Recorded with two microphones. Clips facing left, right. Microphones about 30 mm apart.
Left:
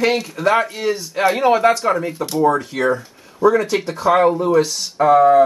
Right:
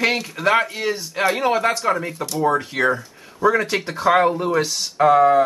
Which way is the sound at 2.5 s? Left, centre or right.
Centre.